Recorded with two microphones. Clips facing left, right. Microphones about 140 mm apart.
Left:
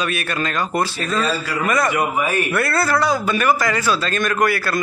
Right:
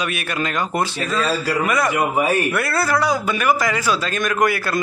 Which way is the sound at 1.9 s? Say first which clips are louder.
Right 2 dB; 30° right (ahead or behind).